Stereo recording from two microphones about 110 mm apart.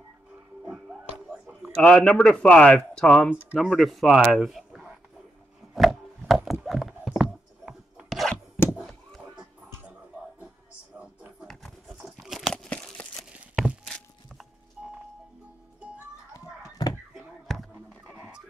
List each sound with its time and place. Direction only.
0.7 s a sound: 10° right (ahead or behind)
1.8 s a man's voice: 10° left (ahead or behind)
5.8 s wood: centre (ahead or behind)
6.6 s rub: centre (ahead or behind)
8.7 s a sound: centre (ahead or behind)
11.4 s tearing: centre (ahead or behind)
14.8 s music: 10° right (ahead or behind)
16.3 s children playing: 40° left (ahead or behind)
17.1 s a sound: centre (ahead or behind)